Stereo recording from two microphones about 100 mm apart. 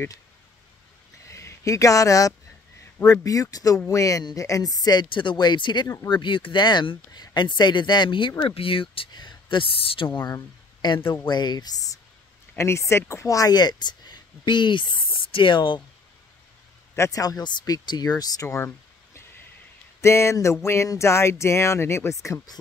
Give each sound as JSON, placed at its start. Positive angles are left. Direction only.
{"t": 1.3, "sound": "speech", "side_deg": 30}
{"t": 9.1, "sound": "speech", "side_deg": 45}
{"t": 10.2, "sound": "speech", "side_deg": 45}
{"t": 16.9, "sound": "speech", "side_deg": 30}
{"t": 20.0, "sound": "speech", "side_deg": 25}